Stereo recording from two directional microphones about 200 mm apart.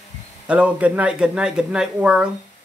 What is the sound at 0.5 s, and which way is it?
Speech, 5° right (ahead or behind).